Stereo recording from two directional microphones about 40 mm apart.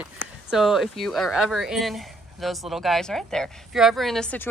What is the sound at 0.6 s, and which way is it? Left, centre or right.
Speech, centre.